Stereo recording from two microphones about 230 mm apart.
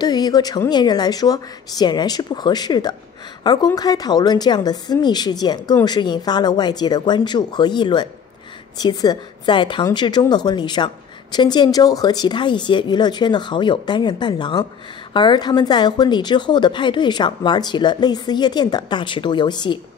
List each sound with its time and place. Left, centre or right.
0.0 s speech: centre